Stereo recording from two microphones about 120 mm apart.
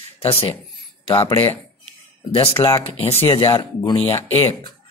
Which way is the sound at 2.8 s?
55° left (ahead or behind).